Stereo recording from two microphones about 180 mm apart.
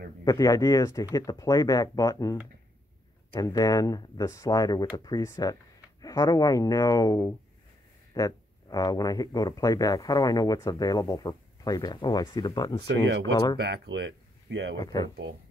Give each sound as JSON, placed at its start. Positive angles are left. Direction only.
{"t": 0.2, "sound": "speech", "side_deg": 20}
{"t": 3.3, "sound": "speech", "side_deg": 20}
{"t": 12.8, "sound": "speech", "side_deg": -75}
{"t": 13.2, "sound": "speech", "side_deg": 20}
{"t": 13.6, "sound": "speech", "side_deg": -70}
{"t": 14.8, "sound": "speech", "side_deg": 20}